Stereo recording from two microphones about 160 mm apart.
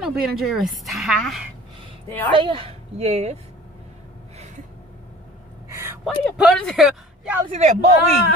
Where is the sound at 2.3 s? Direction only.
35° right (ahead or behind).